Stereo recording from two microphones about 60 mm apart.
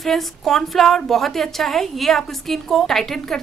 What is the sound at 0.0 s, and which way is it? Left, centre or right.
A woman's voice, centre.